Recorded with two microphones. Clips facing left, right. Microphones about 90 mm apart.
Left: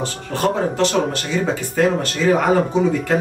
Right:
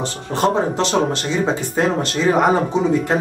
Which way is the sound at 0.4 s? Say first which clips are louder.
Right 1 dB; 20° right (ahead or behind).